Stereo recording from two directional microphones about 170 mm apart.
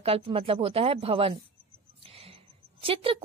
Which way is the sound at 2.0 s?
35° right (ahead or behind).